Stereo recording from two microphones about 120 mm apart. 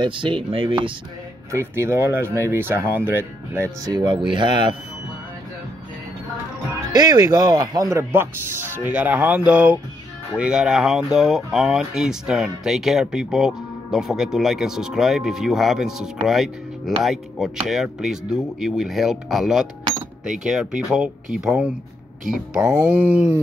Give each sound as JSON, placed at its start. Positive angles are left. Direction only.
{"t": 0.0, "sound": "speech", "side_deg": -45}
{"t": 1.5, "sound": "speech", "side_deg": -20}
{"t": 3.8, "sound": "speech", "side_deg": -35}
{"t": 6.9, "sound": "speech", "side_deg": -35}
{"t": 22.8, "sound": "dog", "side_deg": -10}